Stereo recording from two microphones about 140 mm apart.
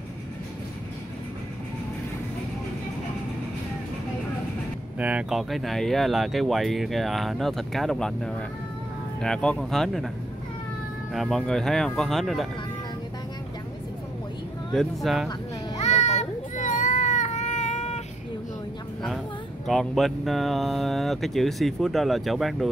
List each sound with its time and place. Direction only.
4.9 s speech: 10° right (ahead or behind)
11.1 s speech: 5° left (ahead or behind)
14.7 s speech: centre (ahead or behind)
15.8 s baby cry: 55° left (ahead or behind)
19.6 s speech: centre (ahead or behind)